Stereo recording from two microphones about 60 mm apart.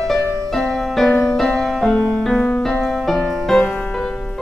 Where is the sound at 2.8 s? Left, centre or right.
Centre.